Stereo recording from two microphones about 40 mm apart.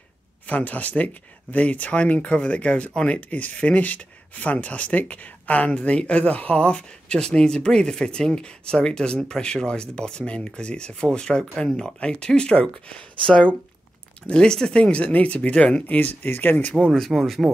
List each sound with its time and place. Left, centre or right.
0.5 s speech: left
15.9 s speech: left
16.9 s speech: centre